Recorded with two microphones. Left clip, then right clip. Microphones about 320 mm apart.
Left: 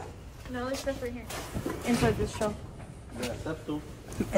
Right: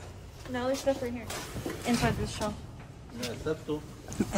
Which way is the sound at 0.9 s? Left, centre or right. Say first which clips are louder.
Right 7 dB; right.